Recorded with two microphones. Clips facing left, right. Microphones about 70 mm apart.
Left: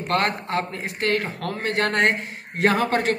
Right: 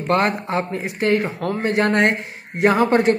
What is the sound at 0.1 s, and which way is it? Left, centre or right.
A man's voice, right.